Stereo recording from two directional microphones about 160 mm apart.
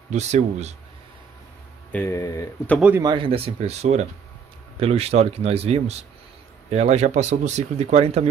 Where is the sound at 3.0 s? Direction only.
30° right (ahead or behind).